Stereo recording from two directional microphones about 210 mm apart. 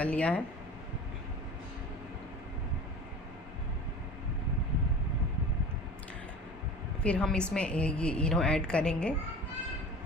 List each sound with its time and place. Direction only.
0.0 s speech: 5° left (ahead or behind)
7.0 s a woman's voice: 5° left (ahead or behind)